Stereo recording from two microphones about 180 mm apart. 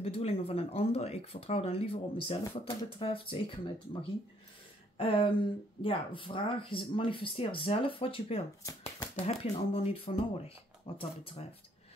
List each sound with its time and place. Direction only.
0.0 s speech: 35° left (ahead or behind)
4.9 s speech: 30° left (ahead or behind)